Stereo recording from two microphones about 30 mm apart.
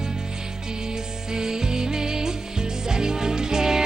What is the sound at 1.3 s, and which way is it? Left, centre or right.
Music, right.